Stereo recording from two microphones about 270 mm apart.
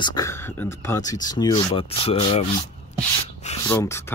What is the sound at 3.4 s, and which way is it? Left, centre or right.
Rub, left.